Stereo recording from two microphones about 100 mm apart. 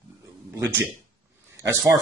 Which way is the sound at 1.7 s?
40° right (ahead or behind).